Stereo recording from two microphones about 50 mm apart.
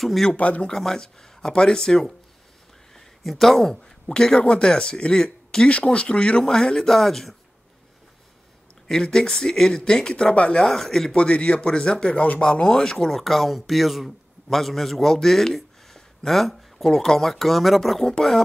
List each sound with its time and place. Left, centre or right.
0.0 s speech: centre
0.4 s speech: left
0.7 s speech: centre
3.3 s speech: centre
4.0 s speech: centre
8.8 s speech: centre
10.6 s speech: centre
11.1 s speech: left
12.2 s speech: left
12.4 s speech: centre